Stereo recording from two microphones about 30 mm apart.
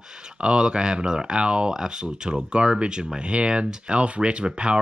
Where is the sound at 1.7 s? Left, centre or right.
Right.